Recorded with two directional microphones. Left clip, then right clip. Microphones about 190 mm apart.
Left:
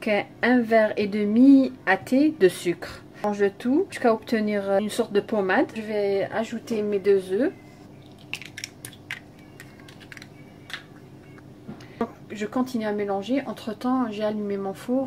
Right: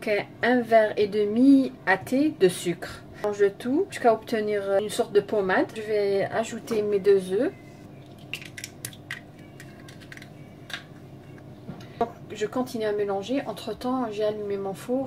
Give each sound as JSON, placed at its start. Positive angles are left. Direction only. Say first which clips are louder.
{"t": 0.0, "sound": "speech", "louder": "left 1 dB", "side_deg": 20}
{"t": 6.4, "sound": "a woman's voice", "louder": "right 1 dB", "side_deg": 5}
{"t": 12.0, "sound": "speech", "louder": "right 3 dB", "side_deg": 15}